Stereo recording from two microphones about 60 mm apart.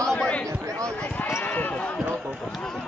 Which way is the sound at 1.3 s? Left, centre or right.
Left.